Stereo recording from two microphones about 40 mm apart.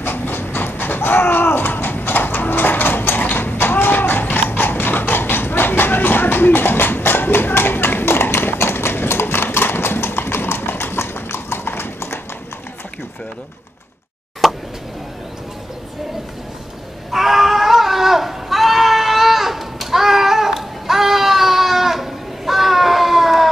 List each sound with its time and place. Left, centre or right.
0.0 s a sound: left
14.4 s plop: centre
17.1 s goat: centre